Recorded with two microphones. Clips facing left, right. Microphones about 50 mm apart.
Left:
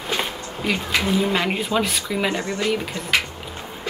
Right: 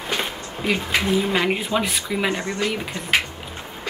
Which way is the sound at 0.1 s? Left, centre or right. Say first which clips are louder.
Left 1 dB; centre.